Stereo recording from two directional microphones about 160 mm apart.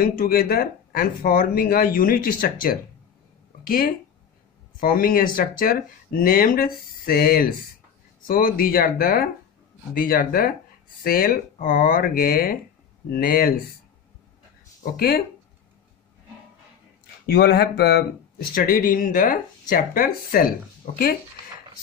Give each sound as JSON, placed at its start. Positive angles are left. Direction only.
{"t": 0.0, "sound": "speech", "side_deg": 65}
{"t": 14.8, "sound": "speech", "side_deg": 65}
{"t": 17.3, "sound": "speech", "side_deg": 80}
{"t": 18.5, "sound": "speech", "side_deg": 60}